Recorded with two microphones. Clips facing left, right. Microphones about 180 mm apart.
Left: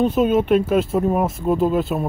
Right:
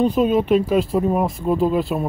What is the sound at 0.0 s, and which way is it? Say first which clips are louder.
Speech: even; centre (ahead or behind).